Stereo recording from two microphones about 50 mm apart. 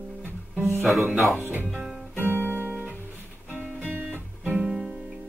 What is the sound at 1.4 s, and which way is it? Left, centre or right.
Speech, right.